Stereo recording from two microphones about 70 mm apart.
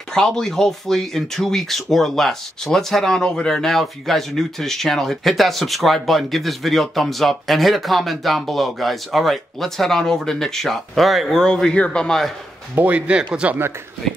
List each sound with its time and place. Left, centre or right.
0.1 s speech: centre
12.7 s speech: right